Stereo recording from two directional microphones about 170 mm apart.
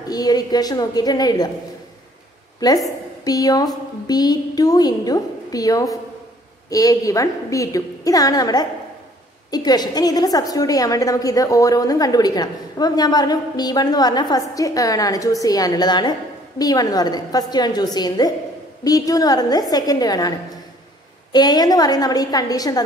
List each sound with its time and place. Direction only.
0.1 s a woman's voice: 20° left (ahead or behind)
3.3 s a woman's voice: 20° left (ahead or behind)